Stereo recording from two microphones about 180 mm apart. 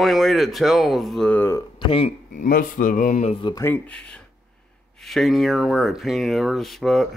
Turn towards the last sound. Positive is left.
turn(degrees=0)  # may be behind; listen again after turning